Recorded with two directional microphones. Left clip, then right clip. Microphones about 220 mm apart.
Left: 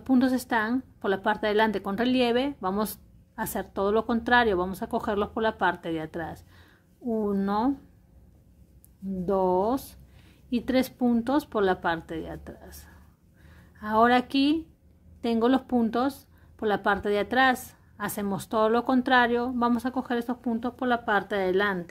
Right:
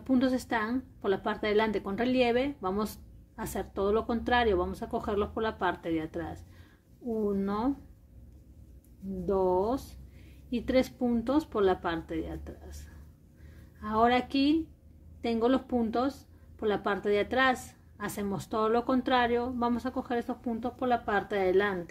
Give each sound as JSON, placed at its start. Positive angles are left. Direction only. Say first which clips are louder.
{"t": 0.0, "sound": "a woman's voice", "louder": "left 4 dB", "side_deg": 30}
{"t": 9.2, "sound": "a woman's voice", "louder": "left 3 dB", "side_deg": 35}